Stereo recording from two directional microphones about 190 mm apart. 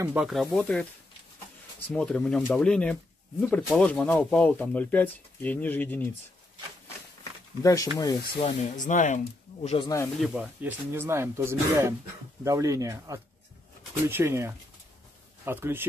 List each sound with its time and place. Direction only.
0.0 s speech: 5° right (ahead or behind); by 6.1 s 10° left (ahead or behind)
7.6 s speech: 15° left (ahead or behind)
8.4 s speech: 40° left (ahead or behind)
10.2 s speech: 5° right (ahead or behind)